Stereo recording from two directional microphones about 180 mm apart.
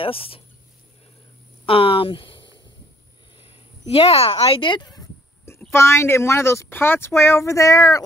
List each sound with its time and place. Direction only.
0.0 s speech: 30° left (ahead or behind)
1.7 s speech: 30° left (ahead or behind)